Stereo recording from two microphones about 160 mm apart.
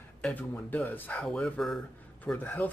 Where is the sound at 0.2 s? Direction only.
10° left (ahead or behind).